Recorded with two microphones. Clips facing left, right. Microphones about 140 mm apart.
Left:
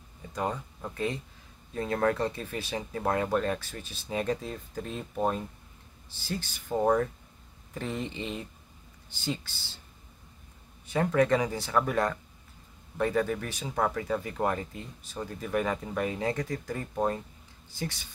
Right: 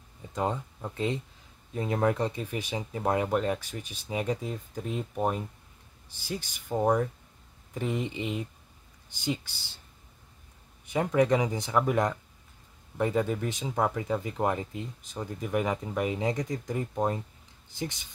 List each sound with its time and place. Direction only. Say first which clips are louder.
0.3 s speech: right 2 dB; 20° right (ahead or behind)
10.9 s speech: even; 15° right (ahead or behind)